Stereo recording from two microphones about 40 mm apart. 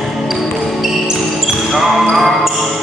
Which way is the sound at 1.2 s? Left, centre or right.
Centre.